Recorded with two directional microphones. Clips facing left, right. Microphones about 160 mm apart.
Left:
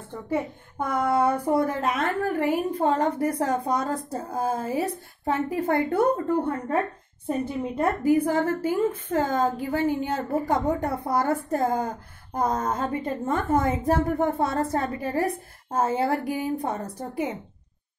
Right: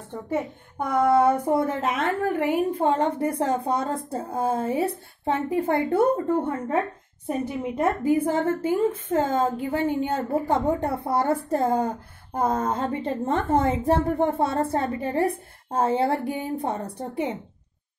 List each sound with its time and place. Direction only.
0.1 s a child's voice: 20° right (ahead or behind)